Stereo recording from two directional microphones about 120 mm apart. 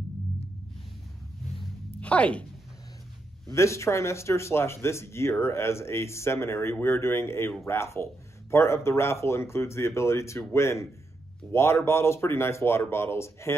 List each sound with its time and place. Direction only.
2.0 s speech: 10° left (ahead or behind)
3.5 s speech: 25° left (ahead or behind)